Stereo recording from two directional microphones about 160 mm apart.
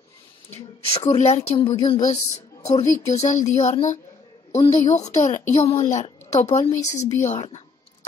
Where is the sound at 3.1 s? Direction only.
50° left (ahead or behind).